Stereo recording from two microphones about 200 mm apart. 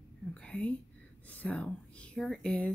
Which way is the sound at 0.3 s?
5° left (ahead or behind).